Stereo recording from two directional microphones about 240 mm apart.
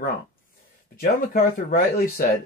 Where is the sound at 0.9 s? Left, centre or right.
Left.